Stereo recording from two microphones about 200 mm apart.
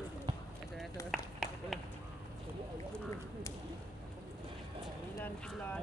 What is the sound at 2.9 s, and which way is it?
Speech, 10° left (ahead or behind).